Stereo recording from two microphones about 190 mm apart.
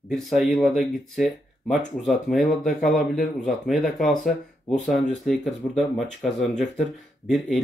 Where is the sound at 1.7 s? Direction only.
40° left (ahead or behind).